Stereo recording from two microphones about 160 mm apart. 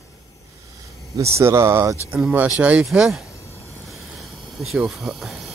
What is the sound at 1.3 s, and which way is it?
Speech, 15° right (ahead or behind).